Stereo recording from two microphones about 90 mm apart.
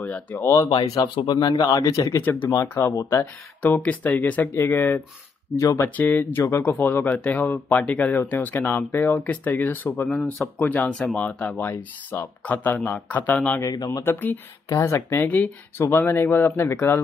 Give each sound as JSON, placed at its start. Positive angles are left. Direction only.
{"t": 0.0, "sound": "speech", "side_deg": 15}
{"t": 0.7, "sound": "speech", "side_deg": 55}
{"t": 1.8, "sound": "speech", "side_deg": 35}
{"t": 2.2, "sound": "speech", "side_deg": 20}
{"t": 3.0, "sound": "speech", "side_deg": 35}
{"t": 3.6, "sound": "speech", "side_deg": 15}
{"t": 5.6, "sound": "speech", "side_deg": 35}
{"t": 5.9, "sound": "speech", "side_deg": 20}
{"t": 10.0, "sound": "speech", "side_deg": 5}
{"t": 10.6, "sound": "speech", "side_deg": 20}
{"t": 13.6, "sound": "speech", "side_deg": 40}
{"t": 14.0, "sound": "speech", "side_deg": 20}
{"t": 14.7, "sound": "speech", "side_deg": 30}